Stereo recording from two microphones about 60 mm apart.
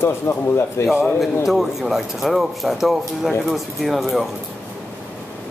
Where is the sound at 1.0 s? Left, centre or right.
Centre.